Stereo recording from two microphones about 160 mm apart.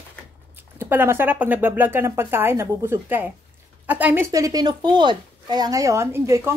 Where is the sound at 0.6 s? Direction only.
15° right (ahead or behind).